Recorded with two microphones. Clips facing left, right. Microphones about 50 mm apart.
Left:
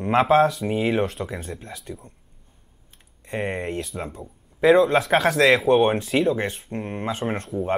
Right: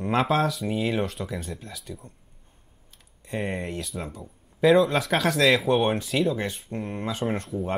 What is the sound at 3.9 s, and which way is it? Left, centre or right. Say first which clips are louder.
Speech: left 3 dB; left.